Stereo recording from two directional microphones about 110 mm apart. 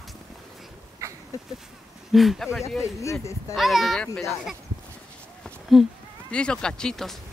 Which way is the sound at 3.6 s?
Centre (ahead or behind).